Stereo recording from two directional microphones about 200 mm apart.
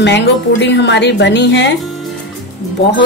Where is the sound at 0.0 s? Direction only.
60° left (ahead or behind).